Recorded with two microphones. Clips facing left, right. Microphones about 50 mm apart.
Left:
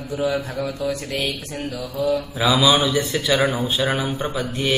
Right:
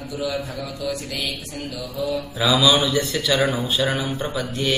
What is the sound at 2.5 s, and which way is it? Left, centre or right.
Speech, centre.